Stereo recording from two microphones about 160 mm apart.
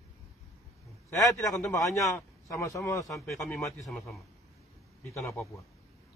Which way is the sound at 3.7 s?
Centre (ahead or behind).